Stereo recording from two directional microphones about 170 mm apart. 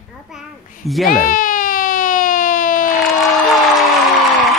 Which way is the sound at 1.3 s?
55° left (ahead or behind).